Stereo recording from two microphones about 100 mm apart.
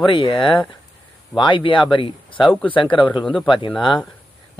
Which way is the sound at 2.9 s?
55° left (ahead or behind).